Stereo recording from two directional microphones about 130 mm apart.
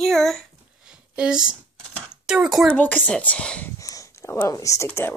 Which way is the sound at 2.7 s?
10° left (ahead or behind).